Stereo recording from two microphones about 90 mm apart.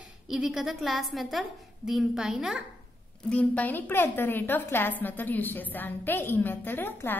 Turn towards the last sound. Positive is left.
turn(degrees=25)  # may be behind; listen again after turning